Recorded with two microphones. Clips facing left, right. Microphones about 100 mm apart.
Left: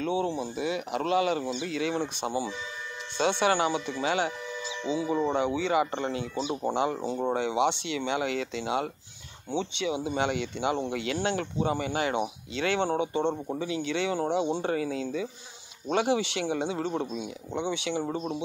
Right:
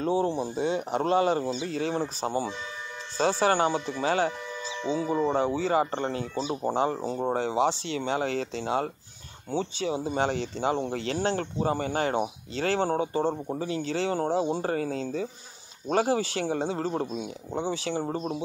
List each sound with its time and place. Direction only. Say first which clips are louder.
0.0 s speech: right 3 dB; 35° right (ahead or behind)